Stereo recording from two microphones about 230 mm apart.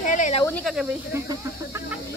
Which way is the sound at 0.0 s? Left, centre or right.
Left.